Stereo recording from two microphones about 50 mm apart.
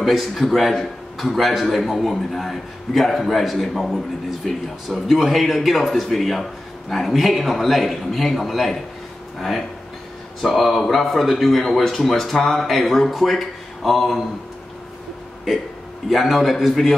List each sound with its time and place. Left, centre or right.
0.0 s a man's voice: centre
16.1 s a man's voice: centre